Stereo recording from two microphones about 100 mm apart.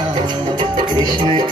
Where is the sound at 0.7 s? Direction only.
50° right (ahead or behind).